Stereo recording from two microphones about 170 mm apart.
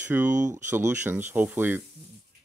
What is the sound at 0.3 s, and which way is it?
Speech, 45° right (ahead or behind).